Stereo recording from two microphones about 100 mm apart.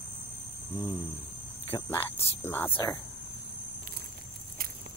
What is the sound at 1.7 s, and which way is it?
Speech, 40° left (ahead or behind).